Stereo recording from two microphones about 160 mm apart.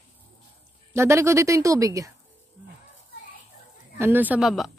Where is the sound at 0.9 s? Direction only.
15° right (ahead or behind).